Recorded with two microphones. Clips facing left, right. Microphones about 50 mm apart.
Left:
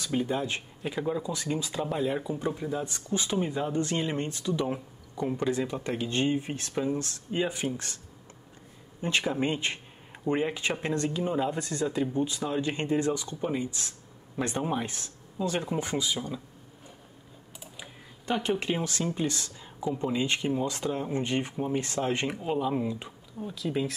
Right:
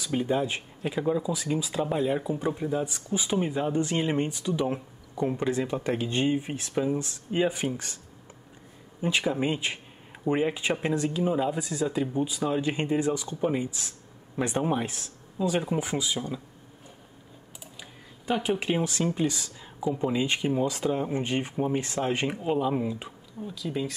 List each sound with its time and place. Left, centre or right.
0.0 s speech: centre
9.0 s speech: centre
18.2 s speech: centre
23.4 s speech: centre